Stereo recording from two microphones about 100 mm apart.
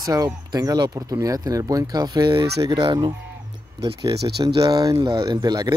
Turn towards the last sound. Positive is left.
turn(degrees=-40)  # may be behind; listen again after turning